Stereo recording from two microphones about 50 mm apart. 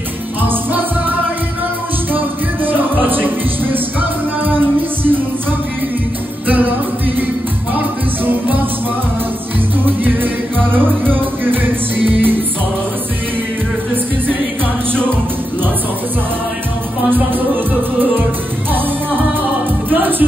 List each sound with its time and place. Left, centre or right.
0.4 s music: right
2.1 s music: right
6.4 s music: right
9.8 s music: right
19.9 s music: right